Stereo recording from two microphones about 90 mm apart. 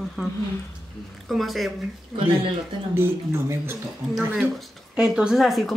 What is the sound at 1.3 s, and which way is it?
Speech, centre (ahead or behind).